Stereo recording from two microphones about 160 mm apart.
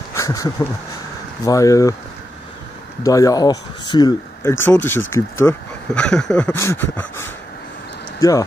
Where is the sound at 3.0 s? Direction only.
20° left (ahead or behind).